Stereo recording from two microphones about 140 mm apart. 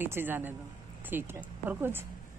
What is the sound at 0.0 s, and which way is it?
A woman's voice, 15° right (ahead or behind).